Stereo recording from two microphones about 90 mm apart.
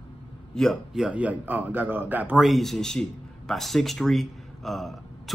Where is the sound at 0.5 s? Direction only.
Centre (ahead or behind); by 2.4 s 20° right (ahead or behind).